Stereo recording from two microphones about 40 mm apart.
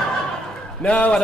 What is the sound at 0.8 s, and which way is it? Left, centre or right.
Speech, left.